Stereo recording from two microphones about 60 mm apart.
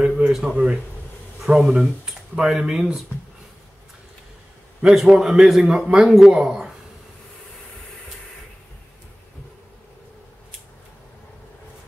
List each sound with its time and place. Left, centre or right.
0.0 s a sound: centre
1.4 s speech: centre
4.8 s a man's voice: centre